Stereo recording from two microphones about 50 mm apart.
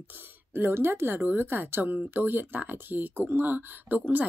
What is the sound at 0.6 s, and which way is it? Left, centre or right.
A woman's voice, right.